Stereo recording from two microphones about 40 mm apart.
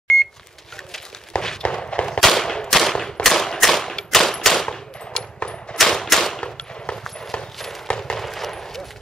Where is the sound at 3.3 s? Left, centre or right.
Centre.